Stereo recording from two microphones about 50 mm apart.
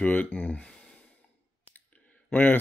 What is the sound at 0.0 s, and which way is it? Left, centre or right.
Speech, left.